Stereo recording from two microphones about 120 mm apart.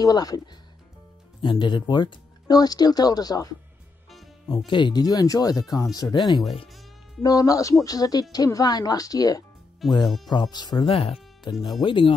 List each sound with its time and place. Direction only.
0.0 s speech: 30° left (ahead or behind)
4.6 s speech: 40° left (ahead or behind)
10.0 s insect: centre (ahead or behind)
10.5 s speech: 35° left (ahead or behind)
10.9 s speech: 55° left (ahead or behind)
11.5 s speech: 40° left (ahead or behind)